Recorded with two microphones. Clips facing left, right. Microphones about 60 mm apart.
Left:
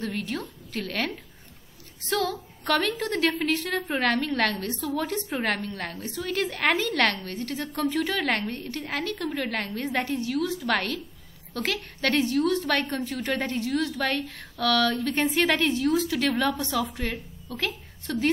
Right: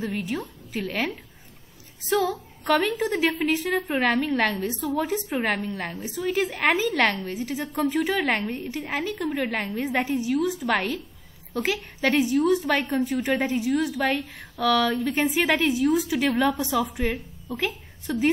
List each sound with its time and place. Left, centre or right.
0.0 s a woman's voice: centre
2.1 s female singing: centre
2.6 s a woman's voice: centre